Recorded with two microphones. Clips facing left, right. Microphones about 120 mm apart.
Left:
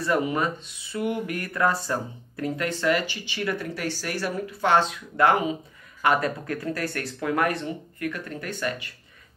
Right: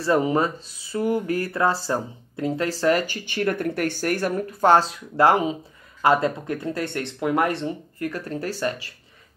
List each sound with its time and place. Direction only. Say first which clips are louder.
0.0 s speech: right 4 dB; 30° right (ahead or behind)